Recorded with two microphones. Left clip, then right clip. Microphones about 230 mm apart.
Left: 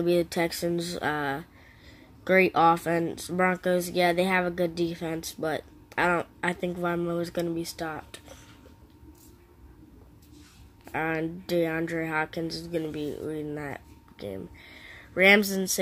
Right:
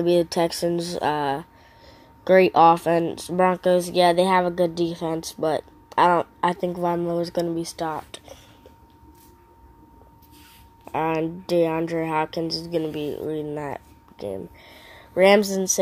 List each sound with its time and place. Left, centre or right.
0.0 s speech: centre
2.5 s speech: centre
10.9 s speech: centre